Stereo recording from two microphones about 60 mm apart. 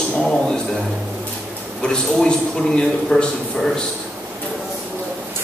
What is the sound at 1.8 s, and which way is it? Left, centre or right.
A man's voice, centre.